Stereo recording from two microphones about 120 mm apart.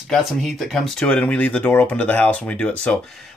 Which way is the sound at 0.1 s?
5° left (ahead or behind).